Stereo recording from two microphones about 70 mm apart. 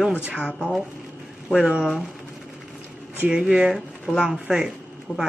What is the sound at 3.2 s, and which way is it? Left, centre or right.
Speech, centre.